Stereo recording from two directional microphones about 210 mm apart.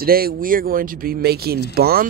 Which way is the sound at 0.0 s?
45° right (ahead or behind).